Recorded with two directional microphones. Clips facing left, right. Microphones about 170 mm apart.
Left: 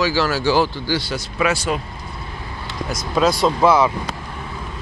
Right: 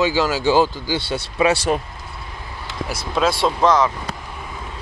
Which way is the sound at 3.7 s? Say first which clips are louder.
Left 1 dB; 10° left (ahead or behind).